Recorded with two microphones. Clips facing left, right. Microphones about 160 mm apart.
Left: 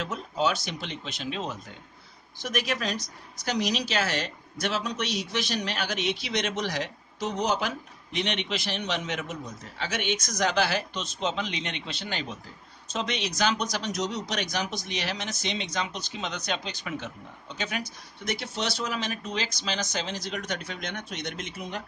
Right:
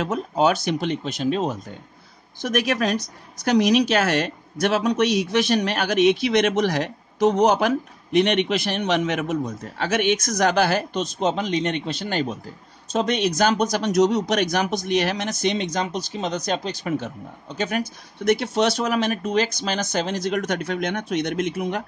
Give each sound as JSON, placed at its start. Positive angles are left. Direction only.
{"t": 0.0, "sound": "speech", "side_deg": -55}
{"t": 2.4, "sound": "speech", "side_deg": -60}